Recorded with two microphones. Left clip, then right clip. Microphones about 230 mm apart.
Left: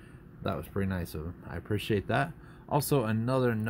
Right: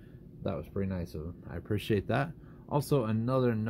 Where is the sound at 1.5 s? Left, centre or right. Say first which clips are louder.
Left 1 dB; centre.